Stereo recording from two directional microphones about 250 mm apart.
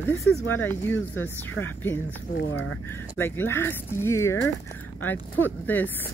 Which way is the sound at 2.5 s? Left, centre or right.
Left.